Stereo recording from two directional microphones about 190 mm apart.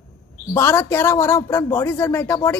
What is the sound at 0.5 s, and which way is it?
A woman's voice, 15° left (ahead or behind).